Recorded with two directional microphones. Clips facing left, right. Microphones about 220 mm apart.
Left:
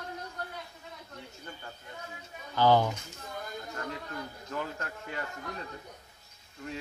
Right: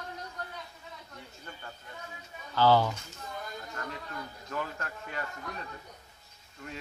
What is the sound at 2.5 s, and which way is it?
Speech, 15° left (ahead or behind).